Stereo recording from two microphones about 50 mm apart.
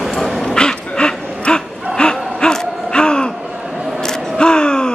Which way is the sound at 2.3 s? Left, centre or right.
Centre.